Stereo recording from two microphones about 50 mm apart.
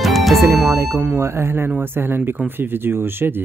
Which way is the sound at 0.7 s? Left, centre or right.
Right.